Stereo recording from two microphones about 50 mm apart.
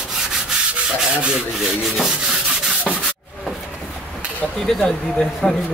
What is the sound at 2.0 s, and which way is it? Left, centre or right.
Sanding, centre.